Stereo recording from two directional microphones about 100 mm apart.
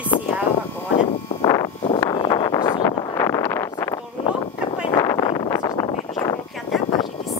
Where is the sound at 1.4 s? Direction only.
40° left (ahead or behind).